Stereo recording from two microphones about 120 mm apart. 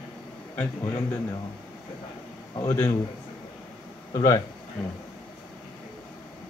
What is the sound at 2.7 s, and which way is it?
Speech, 20° left (ahead or behind).